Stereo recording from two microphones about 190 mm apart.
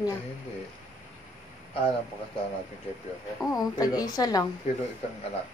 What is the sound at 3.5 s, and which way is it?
Speech, 20° left (ahead or behind).